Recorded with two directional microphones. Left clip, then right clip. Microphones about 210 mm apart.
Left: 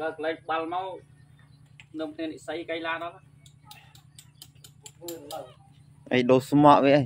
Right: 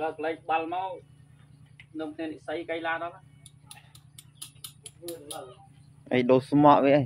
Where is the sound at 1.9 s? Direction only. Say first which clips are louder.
Left 2 dB; 50° left (ahead or behind).